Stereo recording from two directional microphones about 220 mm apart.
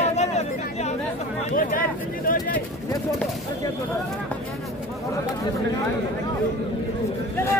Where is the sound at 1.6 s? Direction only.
40° left (ahead or behind).